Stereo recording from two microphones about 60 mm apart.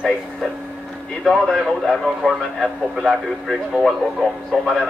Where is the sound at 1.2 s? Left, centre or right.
Centre.